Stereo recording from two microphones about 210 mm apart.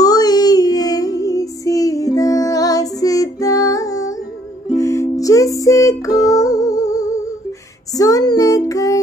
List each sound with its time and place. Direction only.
0.0 s music: 20° left (ahead or behind)